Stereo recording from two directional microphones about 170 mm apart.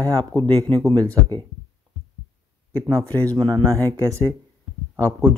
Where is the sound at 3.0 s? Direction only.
10° left (ahead or behind).